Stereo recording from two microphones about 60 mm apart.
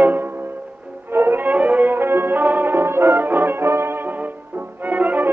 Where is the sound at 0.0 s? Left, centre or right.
Right.